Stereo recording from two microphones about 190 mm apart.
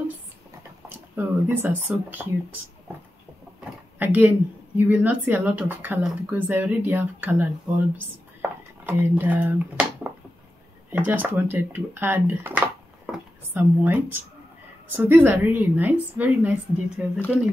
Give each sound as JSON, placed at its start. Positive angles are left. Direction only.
{"t": 0.8, "sound": "speech", "side_deg": -10}
{"t": 4.0, "sound": "a woman's voice", "side_deg": -10}
{"t": 8.4, "sound": "a sound", "side_deg": -10}
{"t": 10.9, "sound": "a woman's voice", "side_deg": -10}